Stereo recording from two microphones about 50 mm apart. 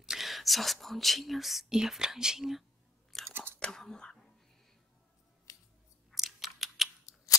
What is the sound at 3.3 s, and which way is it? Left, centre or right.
Chewing, right.